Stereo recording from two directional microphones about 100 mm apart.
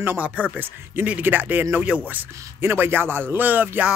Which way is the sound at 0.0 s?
20° right (ahead or behind).